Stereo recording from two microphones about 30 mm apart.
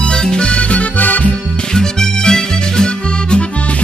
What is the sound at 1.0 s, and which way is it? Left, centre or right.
Music, left.